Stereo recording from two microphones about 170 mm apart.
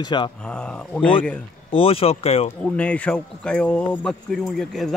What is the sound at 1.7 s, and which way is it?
Speech, 35° left (ahead or behind).